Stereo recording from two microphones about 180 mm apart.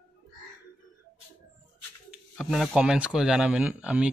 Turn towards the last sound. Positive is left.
turn(degrees=-5)  # may be behind; listen again after turning